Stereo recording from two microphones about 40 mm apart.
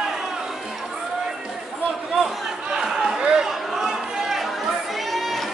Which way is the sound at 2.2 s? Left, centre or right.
Centre.